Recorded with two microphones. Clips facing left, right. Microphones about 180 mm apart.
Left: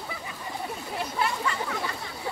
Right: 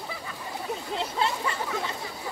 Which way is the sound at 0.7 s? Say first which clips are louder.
Right 2 dB; 25° right (ahead or behind).